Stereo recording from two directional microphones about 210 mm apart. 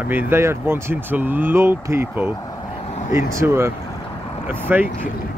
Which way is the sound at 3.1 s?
15° right (ahead or behind).